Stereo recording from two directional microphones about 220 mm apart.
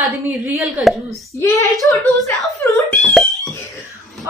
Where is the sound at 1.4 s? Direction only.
15° left (ahead or behind).